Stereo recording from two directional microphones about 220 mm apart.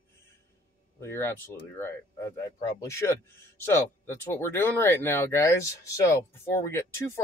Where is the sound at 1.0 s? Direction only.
10° left (ahead or behind).